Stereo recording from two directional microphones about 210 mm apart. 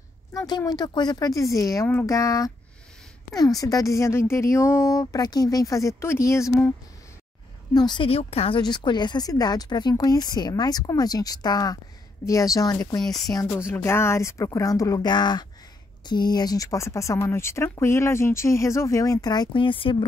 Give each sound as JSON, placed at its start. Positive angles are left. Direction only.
{"t": 0.3, "sound": "a woman's voice", "side_deg": 20}
{"t": 7.7, "sound": "a woman's voice", "side_deg": 20}